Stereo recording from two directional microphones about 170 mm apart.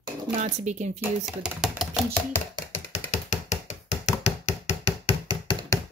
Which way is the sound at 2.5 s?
35° left (ahead or behind).